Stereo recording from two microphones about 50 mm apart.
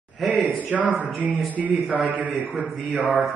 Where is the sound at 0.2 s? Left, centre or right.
Centre.